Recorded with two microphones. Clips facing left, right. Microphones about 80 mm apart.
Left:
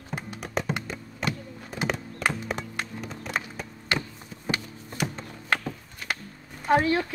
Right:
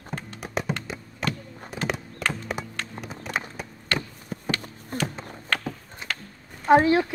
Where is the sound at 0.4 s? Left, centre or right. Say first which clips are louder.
Right 1 dB; centre.